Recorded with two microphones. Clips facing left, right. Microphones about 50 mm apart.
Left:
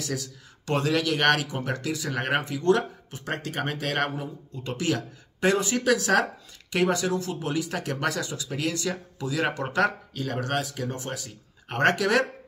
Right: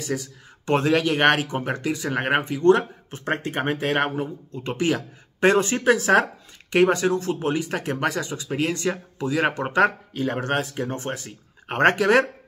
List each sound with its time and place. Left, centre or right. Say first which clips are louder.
0.0 s speech: right 4 dB; right